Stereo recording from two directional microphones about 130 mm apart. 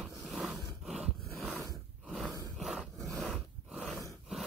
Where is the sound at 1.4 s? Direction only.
10° right (ahead or behind).